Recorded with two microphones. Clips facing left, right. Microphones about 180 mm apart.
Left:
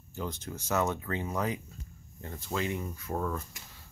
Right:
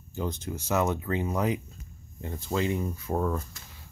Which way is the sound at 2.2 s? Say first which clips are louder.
Right 5 dB; 25° right (ahead or behind).